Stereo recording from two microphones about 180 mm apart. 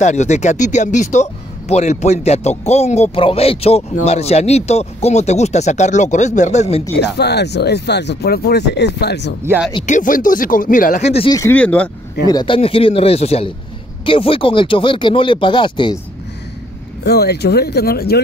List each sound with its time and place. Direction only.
0.0 s speech: 40° left (ahead or behind)
7.0 s speech: 65° left (ahead or behind)
9.8 s speech: 45° left (ahead or behind)
11.1 s speech: 35° left (ahead or behind)
11.3 s speech: 10° left (ahead or behind)
12.3 s speech: 25° left (ahead or behind)
17.0 s speech: 65° left (ahead or behind)